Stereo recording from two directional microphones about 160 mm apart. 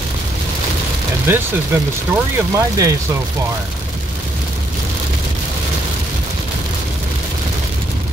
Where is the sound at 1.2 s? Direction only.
15° right (ahead or behind).